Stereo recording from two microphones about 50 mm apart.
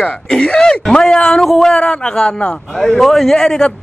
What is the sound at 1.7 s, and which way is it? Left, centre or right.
Speech, left.